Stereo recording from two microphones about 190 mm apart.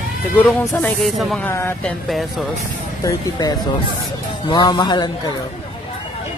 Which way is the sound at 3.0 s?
20° left (ahead or behind).